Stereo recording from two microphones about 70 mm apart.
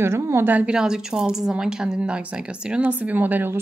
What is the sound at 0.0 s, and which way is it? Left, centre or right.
Speech, right.